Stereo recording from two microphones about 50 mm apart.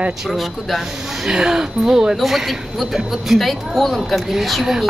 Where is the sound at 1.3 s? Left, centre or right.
Centre.